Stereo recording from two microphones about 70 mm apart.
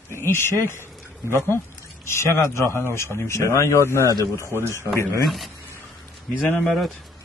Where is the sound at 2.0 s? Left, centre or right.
Left.